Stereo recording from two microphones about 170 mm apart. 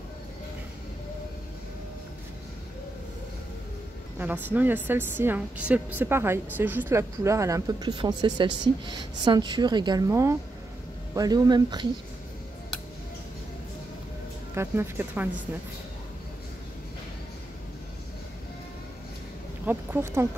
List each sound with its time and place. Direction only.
4.2 s a woman's voice: 10° right (ahead or behind)
14.5 s a woman's voice: 15° right (ahead or behind)
19.6 s a sound: 10° right (ahead or behind)